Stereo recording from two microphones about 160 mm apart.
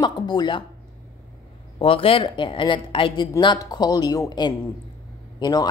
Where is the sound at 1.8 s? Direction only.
35° left (ahead or behind).